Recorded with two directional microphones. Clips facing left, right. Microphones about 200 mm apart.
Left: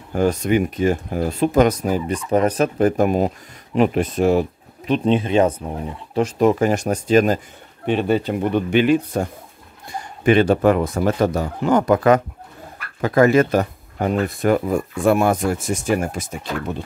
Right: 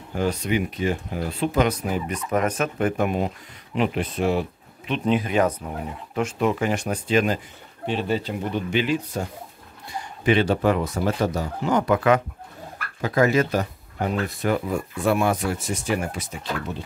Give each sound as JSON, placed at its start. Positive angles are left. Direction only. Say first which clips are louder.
{"t": 0.1, "sound": "speech", "louder": "left 6 dB", "side_deg": 45}
{"t": 5.0, "sound": "speech", "louder": "left 4 dB", "side_deg": 25}
{"t": 6.1, "sound": "speech", "louder": "left 6 dB", "side_deg": 40}
{"t": 7.8, "sound": "speech", "louder": "left 6 dB", "side_deg": 55}
{"t": 13.0, "sound": "speech", "louder": "left 5 dB", "side_deg": 55}